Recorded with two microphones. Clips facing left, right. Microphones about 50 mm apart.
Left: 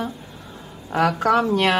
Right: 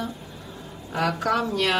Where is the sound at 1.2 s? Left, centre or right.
Left.